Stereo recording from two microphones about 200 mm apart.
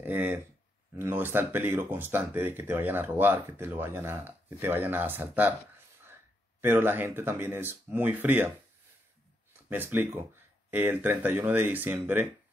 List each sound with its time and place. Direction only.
0.0 s a sound: 10° right (ahead or behind)
0.9 s speech: 10° right (ahead or behind)
6.6 s speech: 10° right (ahead or behind)
9.7 s speech: 10° right (ahead or behind)